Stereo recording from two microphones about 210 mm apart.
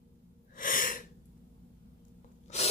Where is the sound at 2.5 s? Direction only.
30° left (ahead or behind).